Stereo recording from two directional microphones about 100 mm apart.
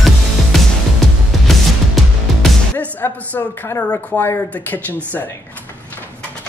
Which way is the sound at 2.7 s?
15° left (ahead or behind).